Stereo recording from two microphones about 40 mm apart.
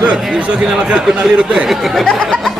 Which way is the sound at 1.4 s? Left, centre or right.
Right.